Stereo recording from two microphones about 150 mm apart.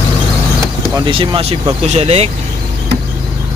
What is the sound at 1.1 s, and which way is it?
Speech, 35° right (ahead or behind).